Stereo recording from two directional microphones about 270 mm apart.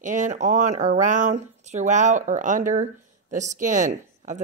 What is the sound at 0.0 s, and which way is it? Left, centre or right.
Speech, right.